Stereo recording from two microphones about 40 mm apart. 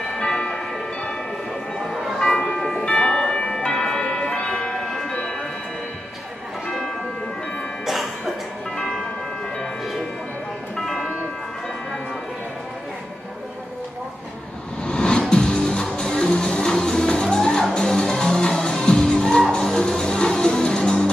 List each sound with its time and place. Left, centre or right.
0.3 s music: centre
1.9 s bell: centre
2.3 s church bell: centre
2.8 s a sound: left
4.0 s bell: centre
4.8 s music: centre
7.8 s music: centre
10.9 s bell: centre
14.8 s music: left